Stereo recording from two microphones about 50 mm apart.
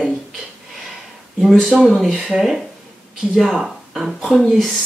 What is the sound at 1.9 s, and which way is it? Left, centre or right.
Speech, centre.